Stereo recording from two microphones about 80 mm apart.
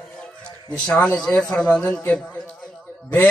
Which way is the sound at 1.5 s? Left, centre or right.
Centre.